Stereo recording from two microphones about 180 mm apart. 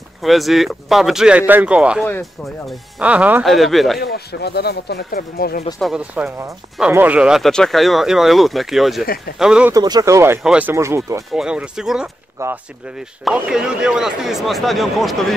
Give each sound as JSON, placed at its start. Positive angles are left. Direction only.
{"t": 0.2, "sound": "speech", "side_deg": 0}
{"t": 4.0, "sound": "speech", "side_deg": 65}
{"t": 5.8, "sound": "speech", "side_deg": -5}
{"t": 9.8, "sound": "speech", "side_deg": -20}
{"t": 11.3, "sound": "speech", "side_deg": -5}